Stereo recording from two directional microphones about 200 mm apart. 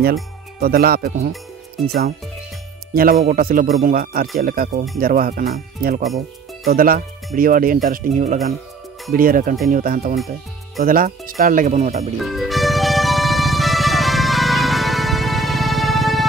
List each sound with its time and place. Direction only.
0.0 s speech: 50° right (ahead or behind)
2.9 s speech: 50° right (ahead or behind)
12.2 s music: centre (ahead or behind)